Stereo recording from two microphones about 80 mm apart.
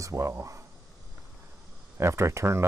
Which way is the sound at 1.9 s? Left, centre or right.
Right.